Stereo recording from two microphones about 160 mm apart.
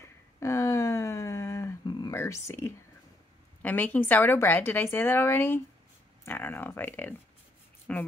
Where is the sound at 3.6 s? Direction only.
10° left (ahead or behind).